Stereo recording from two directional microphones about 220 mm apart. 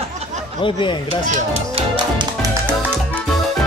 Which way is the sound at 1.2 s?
25° right (ahead or behind).